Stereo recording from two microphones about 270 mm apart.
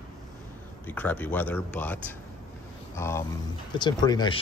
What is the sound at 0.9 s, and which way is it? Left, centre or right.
Speech, centre.